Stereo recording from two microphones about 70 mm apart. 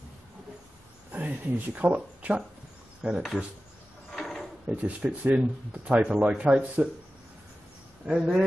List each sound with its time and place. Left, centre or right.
1.1 s speech: right
3.0 s speech: centre
4.2 s drawer open or close: centre
4.6 s speech: centre
8.2 s speech: centre